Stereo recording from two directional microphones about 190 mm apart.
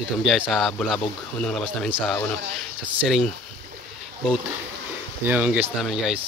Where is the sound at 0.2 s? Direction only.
Centre (ahead or behind).